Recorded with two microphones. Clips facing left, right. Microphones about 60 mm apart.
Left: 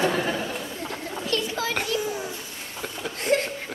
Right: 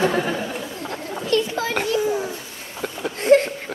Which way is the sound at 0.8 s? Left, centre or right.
Right.